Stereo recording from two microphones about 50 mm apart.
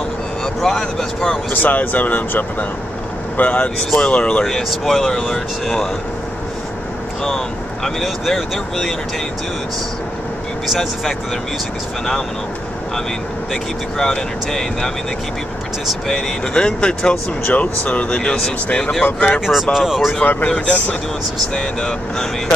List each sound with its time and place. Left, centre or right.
0.6 s speech: centre
1.5 s speech: left
4.5 s speech: centre
7.2 s speech: centre
10.7 s speech: centre
13.5 s speech: centre
16.1 s speech: centre
17.5 s speech: left
19.4 s speech: centre
20.4 s speech: centre
21.5 s speech: centre